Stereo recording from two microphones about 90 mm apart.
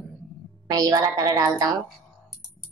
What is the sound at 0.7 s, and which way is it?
Speech, 40° right (ahead or behind).